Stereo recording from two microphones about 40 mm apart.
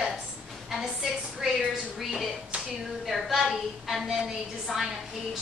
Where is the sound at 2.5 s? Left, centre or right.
Right.